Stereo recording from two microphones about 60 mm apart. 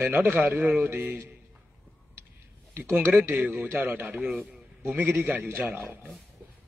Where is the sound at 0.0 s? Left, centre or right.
Right.